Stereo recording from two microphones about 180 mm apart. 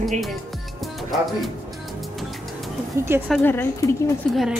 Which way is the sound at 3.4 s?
10° left (ahead or behind).